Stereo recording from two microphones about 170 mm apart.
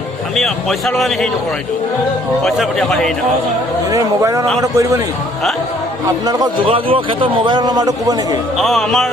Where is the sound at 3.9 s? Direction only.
20° right (ahead or behind).